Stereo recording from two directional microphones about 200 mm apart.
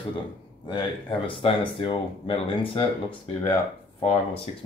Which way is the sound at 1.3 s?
25° left (ahead or behind).